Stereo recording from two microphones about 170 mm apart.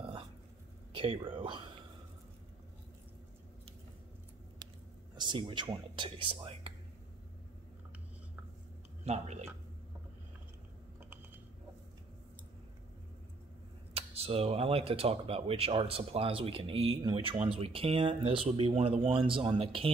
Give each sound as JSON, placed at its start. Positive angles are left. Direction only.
{"t": 0.9, "sound": "speech", "side_deg": -30}
{"t": 5.1, "sound": "speech", "side_deg": -25}
{"t": 9.0, "sound": "speech", "side_deg": -40}
{"t": 13.9, "sound": "speech", "side_deg": -35}